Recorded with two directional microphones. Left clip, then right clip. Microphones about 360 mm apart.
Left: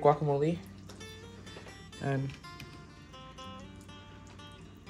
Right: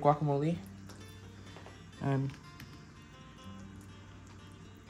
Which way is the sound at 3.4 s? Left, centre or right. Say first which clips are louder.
Left 7 dB; centre.